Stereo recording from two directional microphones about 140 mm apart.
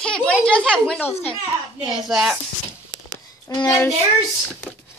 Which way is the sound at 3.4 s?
25° left (ahead or behind).